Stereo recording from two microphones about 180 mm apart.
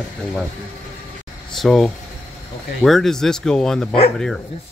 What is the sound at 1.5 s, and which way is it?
A man's voice, 5° left (ahead or behind).